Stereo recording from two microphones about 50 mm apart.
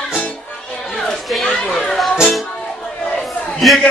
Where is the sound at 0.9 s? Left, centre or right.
Centre.